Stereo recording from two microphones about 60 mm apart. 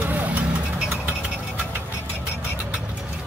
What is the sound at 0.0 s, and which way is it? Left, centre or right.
Vehicle, right.